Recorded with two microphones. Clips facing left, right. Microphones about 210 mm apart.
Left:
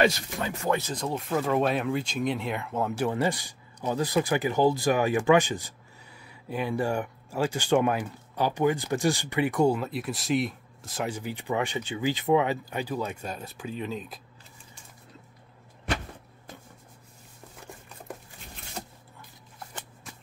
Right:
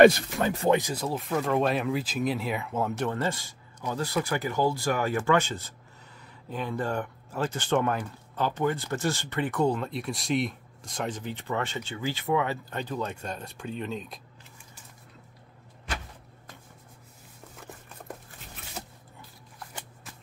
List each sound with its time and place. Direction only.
0.0 s speech: 55° right (ahead or behind)
0.7 s speech: 15° right (ahead or behind)
3.1 s speech: 15° left (ahead or behind)